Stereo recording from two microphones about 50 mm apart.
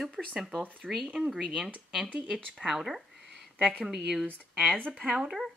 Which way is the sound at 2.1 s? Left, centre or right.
Right.